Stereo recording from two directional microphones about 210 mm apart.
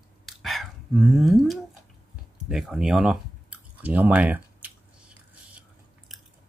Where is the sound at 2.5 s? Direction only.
Centre (ahead or behind).